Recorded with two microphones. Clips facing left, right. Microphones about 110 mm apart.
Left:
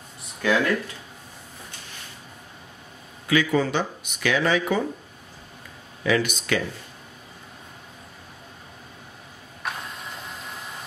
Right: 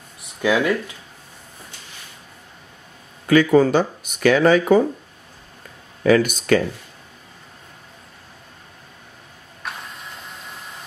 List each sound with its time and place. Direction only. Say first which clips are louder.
0.4 s speech: right 3 dB; 15° right (ahead or behind)
3.3 s speech: right 8 dB; 45° right (ahead or behind)
6.0 s speech: right 7 dB; 45° right (ahead or behind)
9.6 s vehicle: left 1 dB; centre (ahead or behind)